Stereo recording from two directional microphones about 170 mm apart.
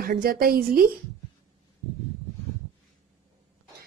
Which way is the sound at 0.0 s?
65° right (ahead or behind).